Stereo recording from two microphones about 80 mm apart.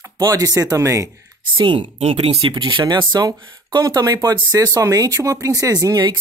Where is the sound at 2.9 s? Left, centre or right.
Right.